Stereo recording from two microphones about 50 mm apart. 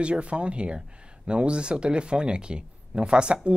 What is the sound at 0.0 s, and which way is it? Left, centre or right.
Speech, right.